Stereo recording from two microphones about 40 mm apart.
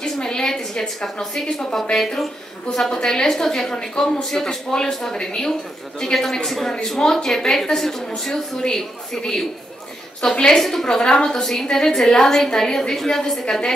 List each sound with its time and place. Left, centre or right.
0.0 s a sound: centre
1.1 s a woman's voice: left
10.5 s speech: centre
11.0 s a woman's voice: left